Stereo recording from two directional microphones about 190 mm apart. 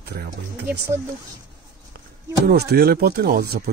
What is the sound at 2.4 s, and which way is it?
Speech, 55° right (ahead or behind).